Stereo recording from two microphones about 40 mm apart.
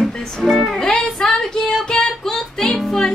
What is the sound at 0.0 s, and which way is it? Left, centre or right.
Music, centre.